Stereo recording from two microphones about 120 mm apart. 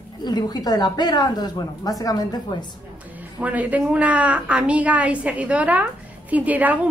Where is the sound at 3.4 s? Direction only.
10° right (ahead or behind).